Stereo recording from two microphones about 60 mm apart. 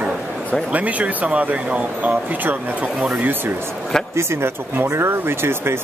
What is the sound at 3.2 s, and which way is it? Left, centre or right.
Speech, right.